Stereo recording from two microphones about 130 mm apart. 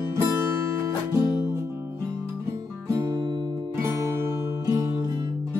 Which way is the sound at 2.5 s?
25° right (ahead or behind).